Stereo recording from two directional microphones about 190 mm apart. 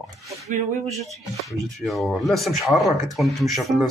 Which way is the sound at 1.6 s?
Centre (ahead or behind).